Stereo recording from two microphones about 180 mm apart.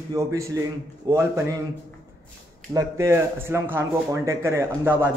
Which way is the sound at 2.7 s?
15° right (ahead or behind).